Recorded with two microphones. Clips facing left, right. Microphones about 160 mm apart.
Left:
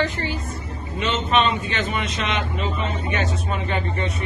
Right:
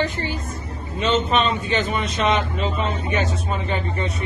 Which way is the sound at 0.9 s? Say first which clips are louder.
Right 1 dB; 35° right (ahead or behind).